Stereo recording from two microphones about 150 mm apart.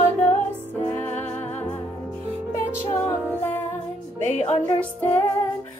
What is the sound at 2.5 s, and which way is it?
Music, 15° left (ahead or behind).